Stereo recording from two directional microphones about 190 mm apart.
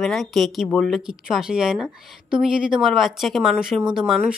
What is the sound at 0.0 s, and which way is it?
Speech, centre (ahead or behind).